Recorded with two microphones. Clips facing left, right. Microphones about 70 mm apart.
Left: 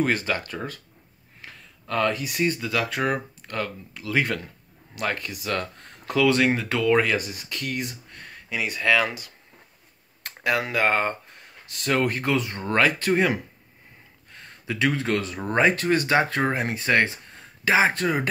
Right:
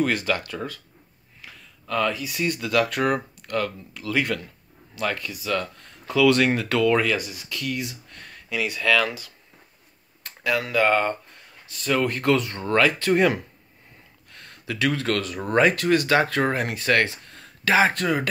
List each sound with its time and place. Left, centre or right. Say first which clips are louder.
0.0 s speech: right 1 dB; left
2.3 s speech: left 2 dB; left
2.6 s speech: right 3 dB; centre; by 5.9 s left
6.1 s speech: right 2 dB; centre
7.2 s speech: left 1 dB; left
8.1 s a sound: right 1 dB; left
8.6 s speech: even; left
10.4 s speech: right 1 dB; left
14.3 s speech: left 1 dB; centre